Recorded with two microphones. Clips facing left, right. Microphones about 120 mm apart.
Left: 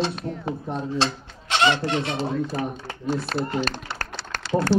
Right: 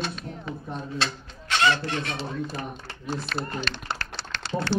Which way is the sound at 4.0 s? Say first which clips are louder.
Left 3 dB; 45° left (ahead or behind).